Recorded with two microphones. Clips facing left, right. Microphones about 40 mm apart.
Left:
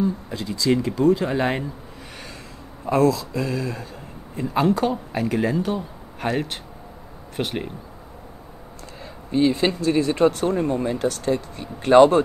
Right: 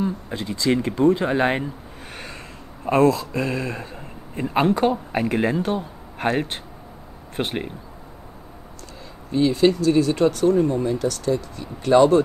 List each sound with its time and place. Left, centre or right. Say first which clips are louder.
0.0 s speech: left 1 dB; right
5.6 s speech: right 1 dB; right
7.3 s speech: right 1 dB; centre
9.0 s speech: left 1 dB; left